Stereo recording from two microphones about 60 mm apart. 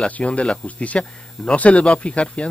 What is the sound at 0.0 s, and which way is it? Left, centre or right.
Speech, centre.